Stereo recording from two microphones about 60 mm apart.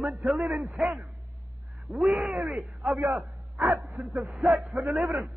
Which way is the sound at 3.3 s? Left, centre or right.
Right.